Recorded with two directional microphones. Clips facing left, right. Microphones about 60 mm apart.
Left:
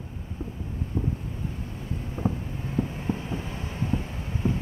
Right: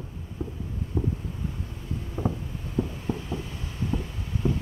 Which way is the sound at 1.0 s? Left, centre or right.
Right.